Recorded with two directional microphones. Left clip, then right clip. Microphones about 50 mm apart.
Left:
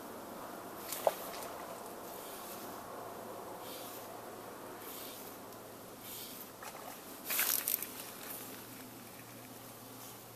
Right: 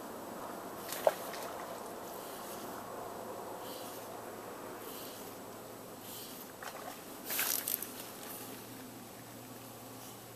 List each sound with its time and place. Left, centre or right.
0.8 s boat: right
2.5 s vehicle: right
7.2 s walk: left